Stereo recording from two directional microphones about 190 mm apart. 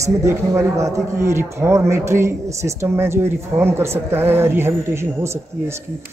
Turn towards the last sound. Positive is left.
turn(degrees=-15)  # may be behind; listen again after turning